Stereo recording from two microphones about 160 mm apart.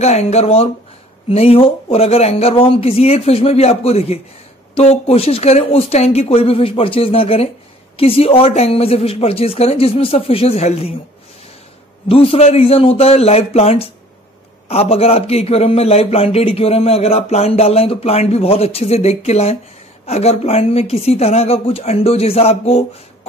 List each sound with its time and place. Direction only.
0.0 s a man's voice: 40° left (ahead or behind)
12.1 s a man's voice: 35° left (ahead or behind)